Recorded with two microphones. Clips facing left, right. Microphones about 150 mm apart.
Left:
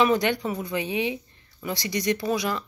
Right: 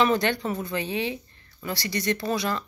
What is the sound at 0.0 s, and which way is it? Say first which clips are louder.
Speech: left 1 dB; 15° left (ahead or behind).